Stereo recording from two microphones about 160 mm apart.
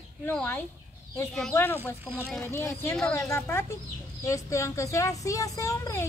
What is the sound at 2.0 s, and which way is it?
Speech, 10° right (ahead or behind).